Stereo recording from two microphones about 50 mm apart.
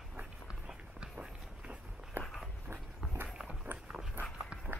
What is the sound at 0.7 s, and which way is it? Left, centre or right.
Run, right.